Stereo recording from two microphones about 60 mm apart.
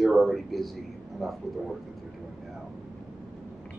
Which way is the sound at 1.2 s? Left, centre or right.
Centre.